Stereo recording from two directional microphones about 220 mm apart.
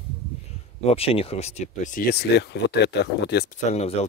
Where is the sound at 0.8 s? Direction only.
25° left (ahead or behind); by 3.4 s 50° left (ahead or behind).